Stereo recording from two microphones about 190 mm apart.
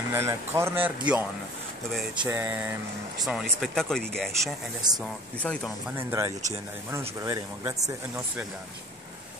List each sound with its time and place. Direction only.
0.1 s speech: 15° right (ahead or behind)
2.2 s speech: 10° right (ahead or behind)
4.9 s speech: 20° right (ahead or behind)
5.4 s speech: 5° left (ahead or behind)
5.9 s speech: 15° right (ahead or behind)